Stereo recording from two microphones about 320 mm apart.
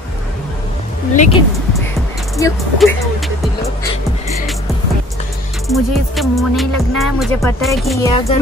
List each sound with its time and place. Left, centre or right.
1.1 s speech: left
2.3 s speech: centre
5.7 s speech: centre
8.1 s speech: centre